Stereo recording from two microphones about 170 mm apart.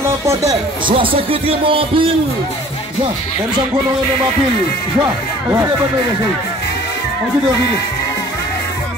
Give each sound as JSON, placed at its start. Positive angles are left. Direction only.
{"t": 0.0, "sound": "speech", "side_deg": -15}
{"t": 0.8, "sound": "speech", "side_deg": -30}